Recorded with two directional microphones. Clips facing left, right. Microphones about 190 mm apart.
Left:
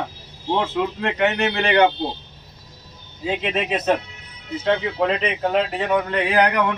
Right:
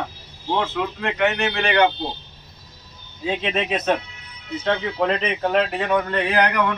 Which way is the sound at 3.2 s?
5° left (ahead or behind).